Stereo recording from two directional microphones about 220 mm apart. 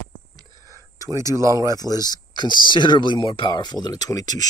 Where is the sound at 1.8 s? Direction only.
15° left (ahead or behind).